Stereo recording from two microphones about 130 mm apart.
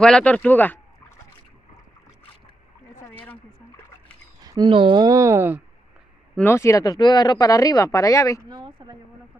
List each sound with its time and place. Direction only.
0.0 s speech: 10° left (ahead or behind)
3.0 s a sound: 15° left (ahead or behind)
4.6 s speech: 40° right (ahead or behind)
5.0 s speech: 25° right (ahead or behind)
6.3 s speech: 20° left (ahead or behind)
8.5 s speech: 40° right (ahead or behind)